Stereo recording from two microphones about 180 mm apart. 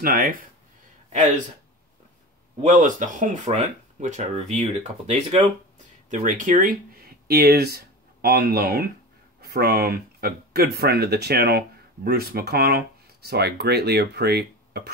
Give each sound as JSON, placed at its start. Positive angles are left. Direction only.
{"t": 0.0, "sound": "speech", "side_deg": -55}
{"t": 2.6, "sound": "speech", "side_deg": -45}
{"t": 7.2, "sound": "speech", "side_deg": -60}